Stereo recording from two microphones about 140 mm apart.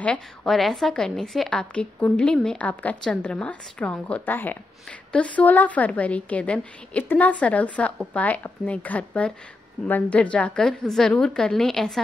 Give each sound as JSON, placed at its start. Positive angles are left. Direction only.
{"t": 0.0, "sound": "a woman's voice", "side_deg": 10}